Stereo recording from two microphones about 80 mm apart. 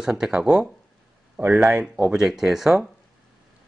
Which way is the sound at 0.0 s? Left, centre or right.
Centre.